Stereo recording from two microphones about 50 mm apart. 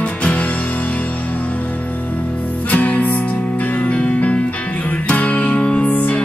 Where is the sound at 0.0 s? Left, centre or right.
Left.